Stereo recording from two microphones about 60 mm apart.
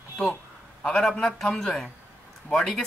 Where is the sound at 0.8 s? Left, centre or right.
Centre.